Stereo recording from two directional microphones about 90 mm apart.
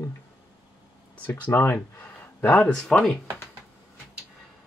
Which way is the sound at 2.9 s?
10° left (ahead or behind).